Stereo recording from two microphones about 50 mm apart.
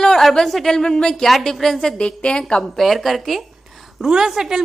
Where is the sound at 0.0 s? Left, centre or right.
Centre.